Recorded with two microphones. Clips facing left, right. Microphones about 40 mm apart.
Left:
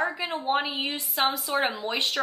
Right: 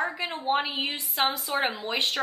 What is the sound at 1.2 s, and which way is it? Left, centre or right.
Speech, right.